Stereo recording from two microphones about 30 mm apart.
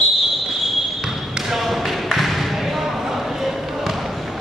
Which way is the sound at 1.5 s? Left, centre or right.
Centre.